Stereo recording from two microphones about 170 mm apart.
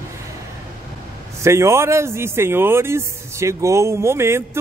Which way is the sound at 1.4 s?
15° right (ahead or behind).